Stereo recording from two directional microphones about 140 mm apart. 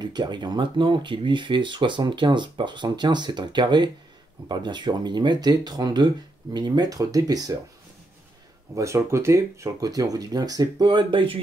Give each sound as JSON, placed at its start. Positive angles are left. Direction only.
{"t": 0.0, "sound": "speech", "side_deg": -30}
{"t": 8.7, "sound": "speech", "side_deg": -20}